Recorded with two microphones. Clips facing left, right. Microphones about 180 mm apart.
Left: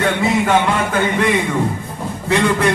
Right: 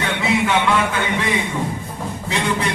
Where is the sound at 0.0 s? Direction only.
45° left (ahead or behind).